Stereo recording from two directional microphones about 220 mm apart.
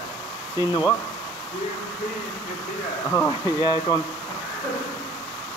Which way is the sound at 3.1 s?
15° left (ahead or behind).